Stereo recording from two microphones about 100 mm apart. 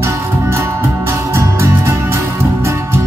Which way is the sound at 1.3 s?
25° right (ahead or behind).